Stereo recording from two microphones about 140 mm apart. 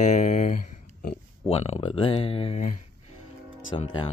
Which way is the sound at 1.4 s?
45° left (ahead or behind).